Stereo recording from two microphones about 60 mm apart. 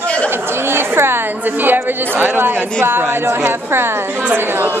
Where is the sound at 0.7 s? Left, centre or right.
Right.